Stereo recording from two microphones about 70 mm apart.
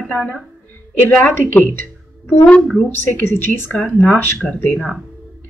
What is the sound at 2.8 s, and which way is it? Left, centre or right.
Speech, left.